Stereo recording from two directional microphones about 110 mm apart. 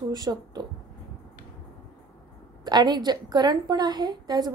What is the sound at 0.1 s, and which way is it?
Speech, 40° right (ahead or behind).